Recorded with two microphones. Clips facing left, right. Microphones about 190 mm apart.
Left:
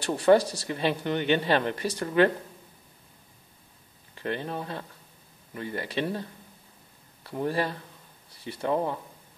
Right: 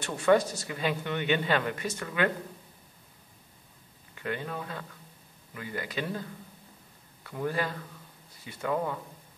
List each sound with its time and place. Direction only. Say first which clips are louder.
0.0 s speech: left 3 dB; 35° left (ahead or behind)
4.1 s speech: left 3 dB; 30° left (ahead or behind)
7.2 s speech: left 3 dB; 30° left (ahead or behind)